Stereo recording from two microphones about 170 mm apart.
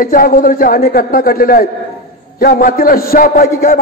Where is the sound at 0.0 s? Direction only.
55° left (ahead or behind).